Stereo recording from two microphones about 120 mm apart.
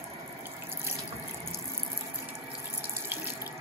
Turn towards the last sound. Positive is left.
turn(degrees=-20)  # may be behind; listen again after turning